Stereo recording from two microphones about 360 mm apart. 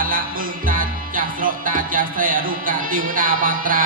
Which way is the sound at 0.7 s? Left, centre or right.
Right.